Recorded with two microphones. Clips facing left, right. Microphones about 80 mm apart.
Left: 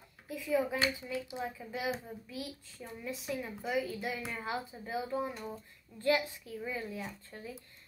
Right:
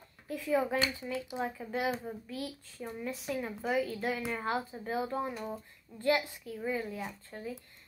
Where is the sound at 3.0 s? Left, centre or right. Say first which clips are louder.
Right 2 dB; right.